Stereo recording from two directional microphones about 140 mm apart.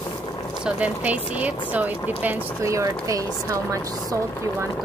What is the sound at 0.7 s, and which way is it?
Speech, 10° right (ahead or behind).